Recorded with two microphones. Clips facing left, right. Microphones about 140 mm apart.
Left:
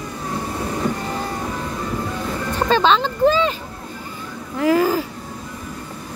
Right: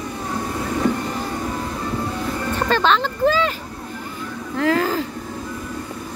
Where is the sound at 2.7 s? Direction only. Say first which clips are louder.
Left 3 dB; 20° left (ahead or behind).